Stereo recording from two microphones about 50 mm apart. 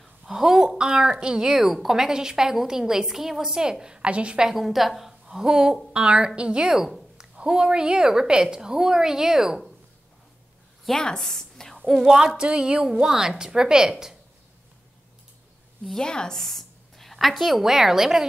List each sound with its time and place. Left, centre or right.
0.2 s a woman's voice: centre
4.5 s a woman's voice: centre
10.9 s a woman's voice: centre
11.9 s a woman's voice: centre
15.9 s a woman's voice: centre